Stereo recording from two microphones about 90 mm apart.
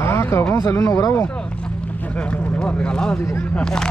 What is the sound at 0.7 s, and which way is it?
Speech, 35° left (ahead or behind).